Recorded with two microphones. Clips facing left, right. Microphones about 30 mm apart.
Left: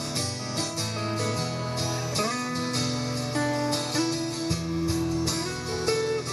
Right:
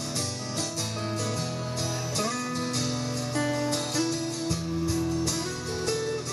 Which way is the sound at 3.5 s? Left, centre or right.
Left.